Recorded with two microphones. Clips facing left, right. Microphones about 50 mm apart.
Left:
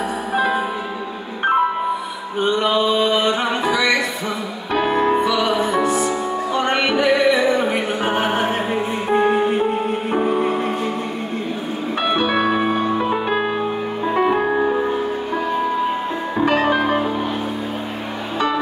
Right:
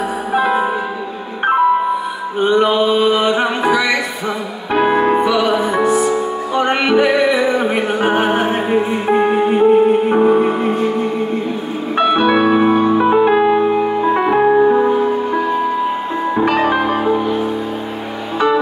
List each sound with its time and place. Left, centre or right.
2.4 s a sound: right
4.7 s music: centre
10.0 s music: right
12.0 s music: centre
16.4 s music: centre